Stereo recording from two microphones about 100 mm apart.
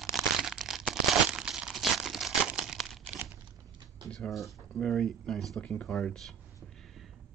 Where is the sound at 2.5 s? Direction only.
5° right (ahead or behind).